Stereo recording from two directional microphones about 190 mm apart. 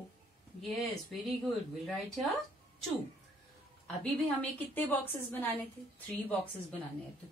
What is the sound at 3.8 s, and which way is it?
A woman's voice, 5° left (ahead or behind).